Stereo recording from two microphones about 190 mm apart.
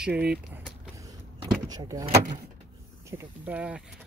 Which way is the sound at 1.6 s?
20° right (ahead or behind).